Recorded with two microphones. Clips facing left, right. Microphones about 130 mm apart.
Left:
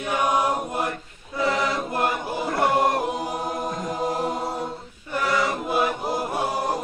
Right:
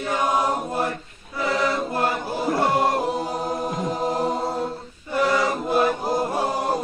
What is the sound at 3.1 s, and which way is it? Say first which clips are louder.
A capella: right 2 dB; 15° left (ahead or behind).